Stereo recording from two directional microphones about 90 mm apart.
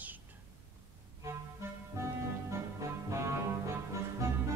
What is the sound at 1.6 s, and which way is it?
Music, 30° right (ahead or behind).